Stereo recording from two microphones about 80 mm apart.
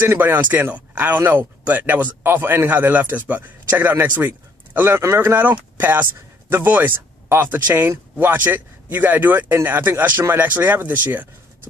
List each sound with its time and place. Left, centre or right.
0.5 s speech: right